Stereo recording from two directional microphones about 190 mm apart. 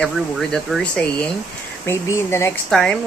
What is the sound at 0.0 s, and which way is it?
Speech, 5° left (ahead or behind).